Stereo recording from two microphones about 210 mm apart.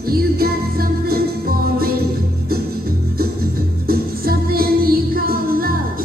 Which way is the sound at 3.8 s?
45° right (ahead or behind).